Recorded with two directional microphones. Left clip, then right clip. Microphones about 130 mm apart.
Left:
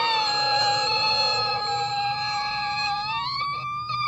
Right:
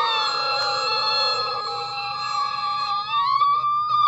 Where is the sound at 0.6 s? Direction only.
20° left (ahead or behind).